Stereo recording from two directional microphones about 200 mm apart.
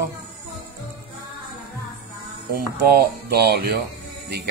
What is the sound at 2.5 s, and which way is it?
Speech, 50° right (ahead or behind).